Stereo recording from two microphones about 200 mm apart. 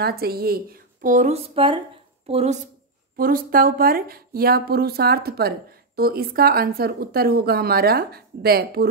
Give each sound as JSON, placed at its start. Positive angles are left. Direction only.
{"t": 0.0, "sound": "a woman's voice", "side_deg": -50}
{"t": 1.0, "sound": "a sound", "side_deg": -40}
{"t": 3.2, "sound": "a woman's voice", "side_deg": -45}